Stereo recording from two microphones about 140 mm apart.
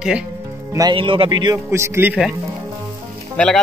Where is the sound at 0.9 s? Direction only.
40° right (ahead or behind).